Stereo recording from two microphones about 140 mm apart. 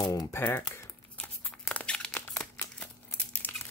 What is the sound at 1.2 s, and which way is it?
Tearing, 10° left (ahead or behind).